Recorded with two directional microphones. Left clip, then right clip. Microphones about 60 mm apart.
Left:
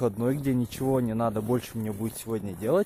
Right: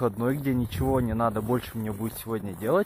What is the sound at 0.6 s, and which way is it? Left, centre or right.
Speech, left.